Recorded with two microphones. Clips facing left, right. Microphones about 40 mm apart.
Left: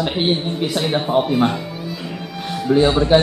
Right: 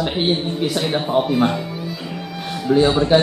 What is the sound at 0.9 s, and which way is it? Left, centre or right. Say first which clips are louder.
Speech: left 2 dB; centre.